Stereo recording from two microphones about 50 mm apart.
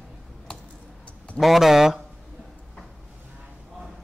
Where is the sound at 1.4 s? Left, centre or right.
Centre.